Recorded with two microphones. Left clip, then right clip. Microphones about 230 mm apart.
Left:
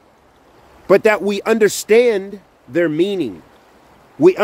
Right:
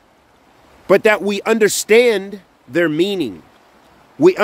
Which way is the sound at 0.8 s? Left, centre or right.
Centre.